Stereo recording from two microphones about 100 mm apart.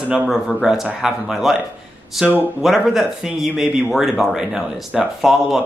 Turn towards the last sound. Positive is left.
turn(degrees=-5)  # may be behind; listen again after turning